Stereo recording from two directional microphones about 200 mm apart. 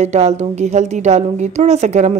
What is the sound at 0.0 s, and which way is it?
A woman's voice, 35° right (ahead or behind).